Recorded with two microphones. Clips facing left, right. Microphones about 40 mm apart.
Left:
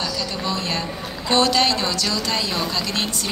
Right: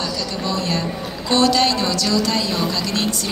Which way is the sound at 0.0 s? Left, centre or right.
Left.